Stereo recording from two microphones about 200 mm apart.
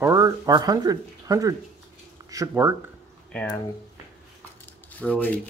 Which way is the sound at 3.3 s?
5° left (ahead or behind).